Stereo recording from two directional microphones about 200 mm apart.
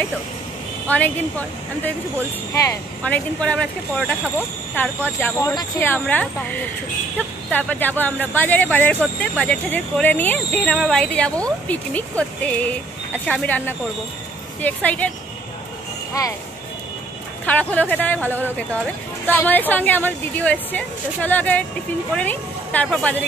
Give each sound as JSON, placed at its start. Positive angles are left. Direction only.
{"t": 0.8, "sound": "speech", "side_deg": 10}
{"t": 2.5, "sound": "speech", "side_deg": 10}
{"t": 5.0, "sound": "speech", "side_deg": 10}
{"t": 16.1, "sound": "speech", "side_deg": 15}
{"t": 17.5, "sound": "speech", "side_deg": 5}